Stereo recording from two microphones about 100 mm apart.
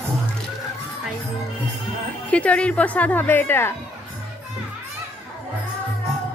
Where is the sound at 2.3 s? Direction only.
15° left (ahead or behind).